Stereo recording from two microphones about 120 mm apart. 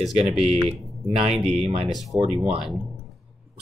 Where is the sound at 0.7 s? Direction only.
50° right (ahead or behind).